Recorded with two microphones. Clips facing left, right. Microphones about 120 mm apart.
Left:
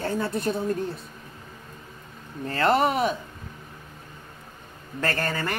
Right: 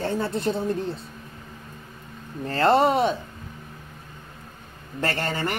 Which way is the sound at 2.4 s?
35° right (ahead or behind).